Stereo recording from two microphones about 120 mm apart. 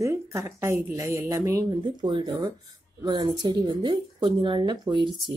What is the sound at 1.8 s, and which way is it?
Speech, 40° right (ahead or behind).